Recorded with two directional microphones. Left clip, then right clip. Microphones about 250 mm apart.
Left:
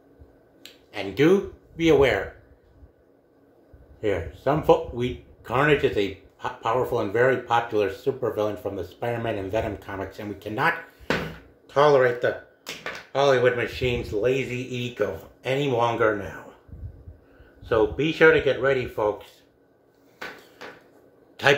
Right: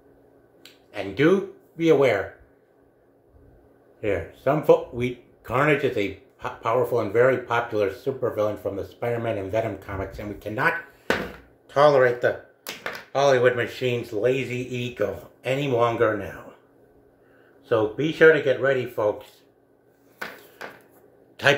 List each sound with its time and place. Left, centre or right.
0.6 s speech: centre
4.0 s speech: centre
11.7 s speech: centre
17.6 s speech: centre
21.4 s a man's voice: centre